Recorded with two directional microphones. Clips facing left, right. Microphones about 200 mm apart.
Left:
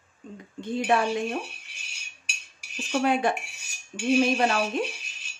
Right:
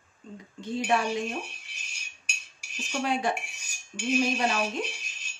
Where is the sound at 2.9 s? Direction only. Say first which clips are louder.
Left 4 dB; 55° left (ahead or behind).